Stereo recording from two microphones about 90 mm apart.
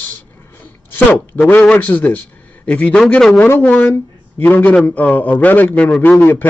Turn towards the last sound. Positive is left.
turn(degrees=25)  # may be behind; listen again after turning